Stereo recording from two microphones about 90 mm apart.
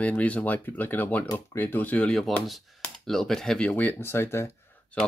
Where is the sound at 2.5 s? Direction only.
Centre (ahead or behind); by 4.0 s 15° left (ahead or behind).